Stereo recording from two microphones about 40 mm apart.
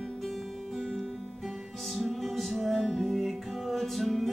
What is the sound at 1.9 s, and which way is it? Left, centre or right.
Music, centre.